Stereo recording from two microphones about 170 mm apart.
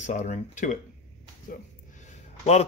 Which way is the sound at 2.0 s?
40° left (ahead or behind).